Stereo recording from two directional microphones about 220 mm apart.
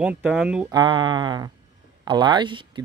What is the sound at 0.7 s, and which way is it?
Speech, 20° right (ahead or behind).